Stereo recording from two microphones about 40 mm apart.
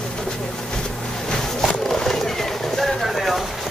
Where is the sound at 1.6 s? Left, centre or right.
Centre.